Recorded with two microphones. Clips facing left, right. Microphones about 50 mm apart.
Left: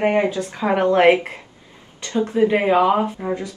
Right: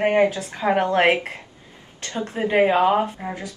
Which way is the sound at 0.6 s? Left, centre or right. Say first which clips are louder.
Even; left.